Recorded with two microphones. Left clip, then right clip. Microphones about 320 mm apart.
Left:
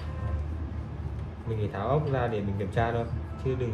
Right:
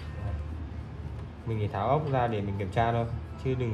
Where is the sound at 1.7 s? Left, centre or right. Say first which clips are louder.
Right 2 dB; right.